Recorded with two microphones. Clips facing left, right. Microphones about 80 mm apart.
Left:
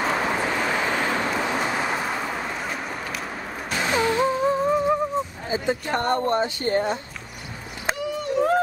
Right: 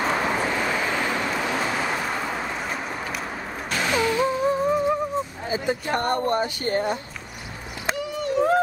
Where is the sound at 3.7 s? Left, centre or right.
Left.